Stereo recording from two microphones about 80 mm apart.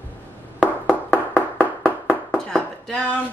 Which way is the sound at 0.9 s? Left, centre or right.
Centre.